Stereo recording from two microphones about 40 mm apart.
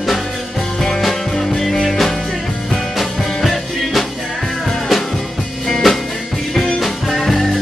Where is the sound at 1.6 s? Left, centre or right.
Centre.